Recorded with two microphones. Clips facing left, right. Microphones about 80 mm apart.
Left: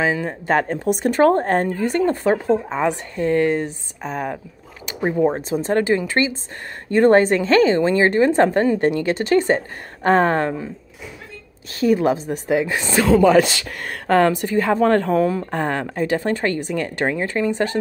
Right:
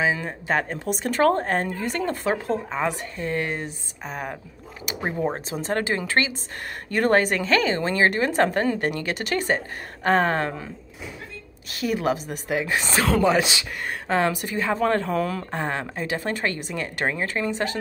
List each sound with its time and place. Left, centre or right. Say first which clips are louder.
0.0 s a woman's voice: left 3 dB; left
5.0 s speech: left 8 dB; centre
5.5 s a woman's voice: left 6 dB; left
6.9 s a woman's voice: left 7 dB; left
11.7 s a woman's voice: left 7 dB; left
13.3 s a woman's voice: left 7 dB; left
15.5 s a woman's voice: left 5 dB; left